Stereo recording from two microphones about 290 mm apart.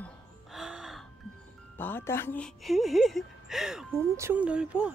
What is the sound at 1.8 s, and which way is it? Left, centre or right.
A woman's voice, centre.